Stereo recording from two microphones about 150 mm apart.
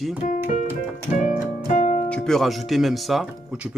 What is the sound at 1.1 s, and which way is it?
Music, 55° left (ahead or behind).